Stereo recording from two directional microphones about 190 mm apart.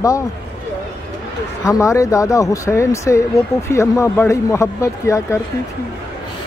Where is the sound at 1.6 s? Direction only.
15° left (ahead or behind).